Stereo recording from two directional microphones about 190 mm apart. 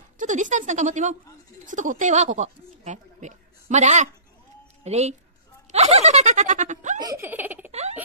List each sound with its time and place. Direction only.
0.2 s speech: 40° right (ahead or behind)
7.0 s speech: 15° right (ahead or behind)
7.7 s baby laughter: 35° right (ahead or behind)